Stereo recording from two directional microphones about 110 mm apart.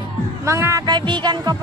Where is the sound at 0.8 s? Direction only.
40° right (ahead or behind).